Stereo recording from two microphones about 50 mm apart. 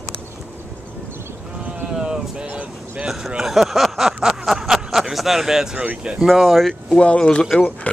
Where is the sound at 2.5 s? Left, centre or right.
Right.